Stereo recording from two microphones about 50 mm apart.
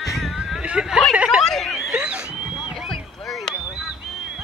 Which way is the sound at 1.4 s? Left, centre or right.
Centre.